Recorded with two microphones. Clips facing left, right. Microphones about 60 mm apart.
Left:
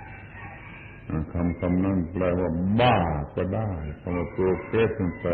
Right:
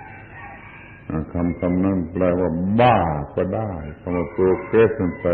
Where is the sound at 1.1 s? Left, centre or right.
Centre.